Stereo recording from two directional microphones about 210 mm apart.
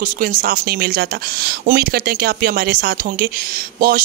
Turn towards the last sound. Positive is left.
turn(degrees=-45)  # may be behind; listen again after turning